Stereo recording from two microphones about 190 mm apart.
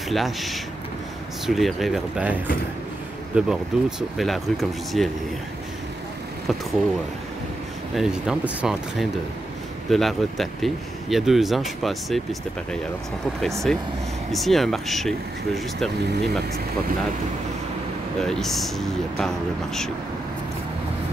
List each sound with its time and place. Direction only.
0.1 s speech: centre (ahead or behind)
7.9 s speech: 5° right (ahead or behind)
13.4 s speech: centre (ahead or behind)
16.0 s speech: 60° right (ahead or behind)
18.2 s speech: centre (ahead or behind)